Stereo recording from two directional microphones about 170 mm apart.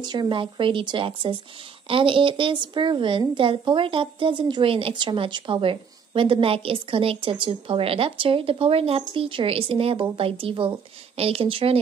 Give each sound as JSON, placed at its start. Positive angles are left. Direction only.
{"t": 0.0, "sound": "a woman's voice", "side_deg": -25}